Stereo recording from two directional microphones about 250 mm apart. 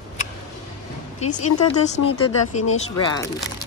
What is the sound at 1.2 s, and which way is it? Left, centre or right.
Speech, left.